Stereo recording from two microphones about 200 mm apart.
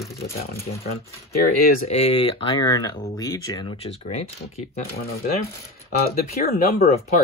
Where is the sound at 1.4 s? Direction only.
45° left (ahead or behind).